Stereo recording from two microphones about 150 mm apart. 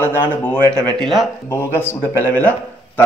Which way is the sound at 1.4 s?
15° left (ahead or behind).